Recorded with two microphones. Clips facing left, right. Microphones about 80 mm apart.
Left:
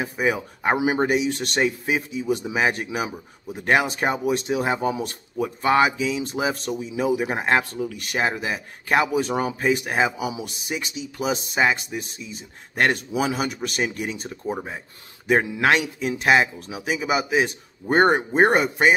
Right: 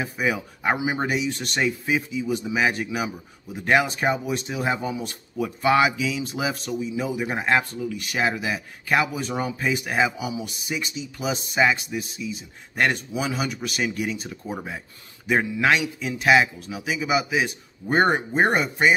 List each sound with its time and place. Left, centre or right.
0.0 s speech: left
1.0 s speech: left